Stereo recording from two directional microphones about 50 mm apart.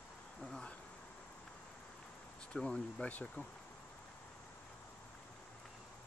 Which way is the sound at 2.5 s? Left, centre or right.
Left.